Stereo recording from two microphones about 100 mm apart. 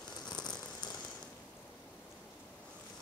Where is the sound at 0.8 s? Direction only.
45° left (ahead or behind).